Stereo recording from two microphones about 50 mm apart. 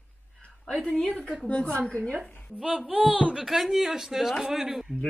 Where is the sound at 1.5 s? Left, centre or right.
Left.